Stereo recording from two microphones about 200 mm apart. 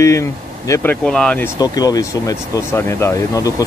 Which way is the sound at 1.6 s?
20° left (ahead or behind).